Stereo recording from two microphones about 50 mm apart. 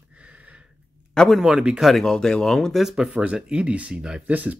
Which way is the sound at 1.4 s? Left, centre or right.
Centre.